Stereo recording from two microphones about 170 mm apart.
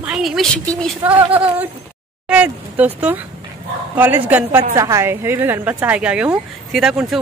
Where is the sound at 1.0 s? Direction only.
10° right (ahead or behind).